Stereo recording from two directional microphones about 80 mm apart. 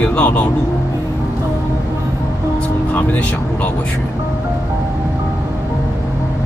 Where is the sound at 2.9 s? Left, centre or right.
Left.